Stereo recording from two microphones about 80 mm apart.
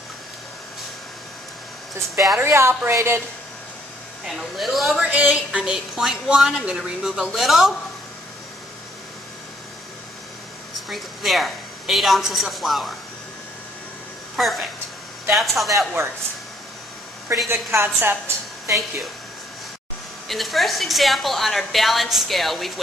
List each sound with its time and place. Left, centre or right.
2.1 s a woman's voice: centre
2.4 s a woman's voice: right
4.3 s a woman's voice: centre
5.0 s a woman's voice: centre
10.9 s a woman's voice: centre
14.3 s a woman's voice: centre
17.5 s a woman's voice: right
20.2 s a woman's voice: centre